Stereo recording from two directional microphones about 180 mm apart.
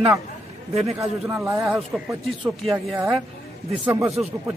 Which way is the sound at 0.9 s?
5° right (ahead or behind).